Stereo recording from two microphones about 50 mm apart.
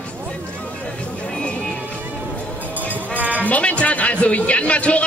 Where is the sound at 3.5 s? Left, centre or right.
Left.